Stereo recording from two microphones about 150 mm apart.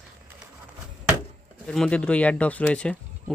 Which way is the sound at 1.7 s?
5° left (ahead or behind).